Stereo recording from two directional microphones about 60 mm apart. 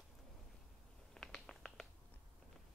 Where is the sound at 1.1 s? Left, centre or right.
Centre.